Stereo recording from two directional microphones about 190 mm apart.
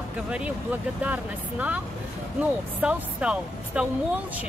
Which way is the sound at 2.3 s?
5° right (ahead or behind).